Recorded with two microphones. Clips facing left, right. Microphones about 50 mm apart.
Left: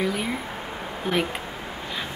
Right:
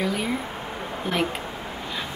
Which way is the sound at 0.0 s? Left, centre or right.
Centre.